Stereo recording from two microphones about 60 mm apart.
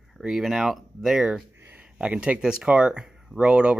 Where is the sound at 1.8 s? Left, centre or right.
Centre.